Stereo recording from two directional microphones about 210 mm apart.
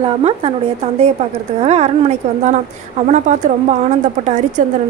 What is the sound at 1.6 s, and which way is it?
A woman's voice, 30° right (ahead or behind).